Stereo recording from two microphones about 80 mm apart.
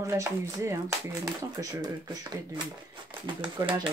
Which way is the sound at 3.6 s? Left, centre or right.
Right.